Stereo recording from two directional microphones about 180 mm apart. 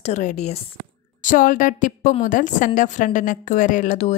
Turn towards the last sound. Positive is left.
turn(degrees=45)  # may be behind; listen again after turning